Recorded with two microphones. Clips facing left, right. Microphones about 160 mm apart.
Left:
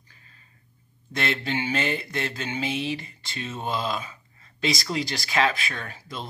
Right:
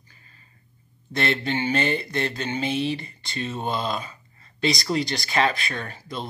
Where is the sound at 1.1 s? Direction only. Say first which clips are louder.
Right 3 dB; centre (ahead or behind).